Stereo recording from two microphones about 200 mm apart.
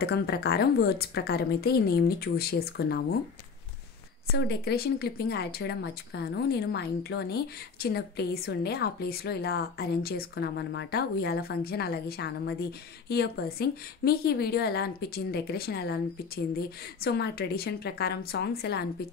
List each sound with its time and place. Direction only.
0.0 s speech: 55° left (ahead or behind)
4.3 s speech: 55° left (ahead or behind)